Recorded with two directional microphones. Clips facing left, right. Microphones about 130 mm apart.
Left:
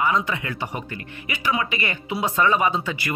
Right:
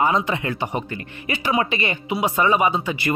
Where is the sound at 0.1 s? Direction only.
25° right (ahead or behind).